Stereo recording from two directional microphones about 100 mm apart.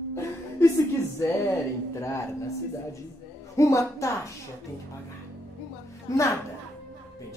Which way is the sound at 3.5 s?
30° left (ahead or behind).